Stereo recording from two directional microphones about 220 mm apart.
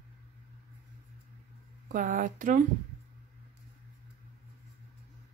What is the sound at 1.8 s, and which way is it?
Speech, 35° right (ahead or behind).